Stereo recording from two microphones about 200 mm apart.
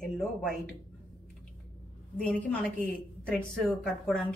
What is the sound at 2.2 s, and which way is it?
A woman's voice, 5° left (ahead or behind).